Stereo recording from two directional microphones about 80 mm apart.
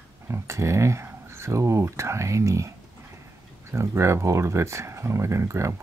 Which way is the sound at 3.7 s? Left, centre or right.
Right.